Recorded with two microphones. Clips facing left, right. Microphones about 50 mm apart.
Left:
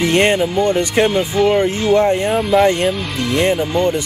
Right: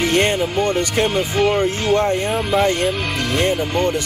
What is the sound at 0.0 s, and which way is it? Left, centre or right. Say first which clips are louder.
Speech: left 3 dB; left.